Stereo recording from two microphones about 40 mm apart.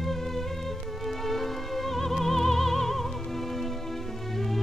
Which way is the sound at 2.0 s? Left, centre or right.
Centre.